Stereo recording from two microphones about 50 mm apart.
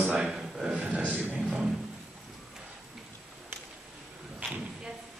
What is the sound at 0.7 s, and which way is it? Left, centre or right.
Speech, right.